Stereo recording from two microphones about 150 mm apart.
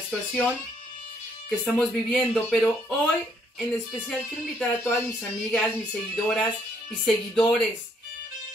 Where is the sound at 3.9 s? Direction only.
Centre (ahead or behind).